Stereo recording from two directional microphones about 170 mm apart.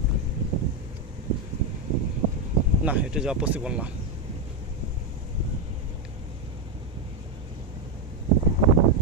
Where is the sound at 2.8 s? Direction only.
5° right (ahead or behind).